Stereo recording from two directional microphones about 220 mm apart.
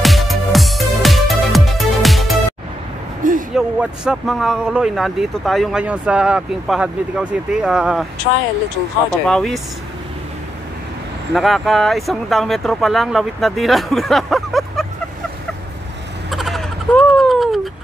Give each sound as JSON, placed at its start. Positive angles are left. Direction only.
{"t": 0.0, "sound": "music", "side_deg": 0}
{"t": 3.2, "sound": "a sound", "side_deg": -35}
{"t": 3.5, "sound": "speech", "side_deg": -5}
{"t": 9.3, "sound": "speech", "side_deg": 0}
{"t": 11.3, "sound": "speech", "side_deg": 0}
{"t": 16.3, "sound": "a sound", "side_deg": 0}